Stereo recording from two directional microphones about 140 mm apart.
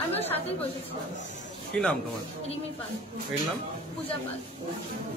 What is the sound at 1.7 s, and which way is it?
Speech, 10° left (ahead or behind).